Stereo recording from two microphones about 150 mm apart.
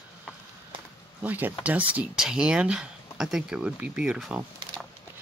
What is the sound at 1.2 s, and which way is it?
Speech, 10° right (ahead or behind).